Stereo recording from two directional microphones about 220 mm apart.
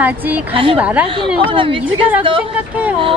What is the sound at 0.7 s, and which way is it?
Speech, 5° right (ahead or behind).